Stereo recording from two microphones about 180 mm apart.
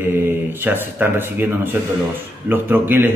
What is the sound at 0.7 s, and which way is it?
A man's voice, 10° right (ahead or behind).